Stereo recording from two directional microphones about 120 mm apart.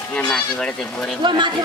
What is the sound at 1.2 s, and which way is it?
Speech, 40° right (ahead or behind).